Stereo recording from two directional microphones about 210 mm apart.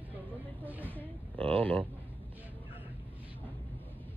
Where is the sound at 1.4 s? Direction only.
5° left (ahead or behind).